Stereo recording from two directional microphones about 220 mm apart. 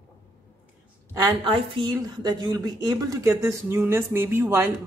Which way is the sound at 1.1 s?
20° right (ahead or behind).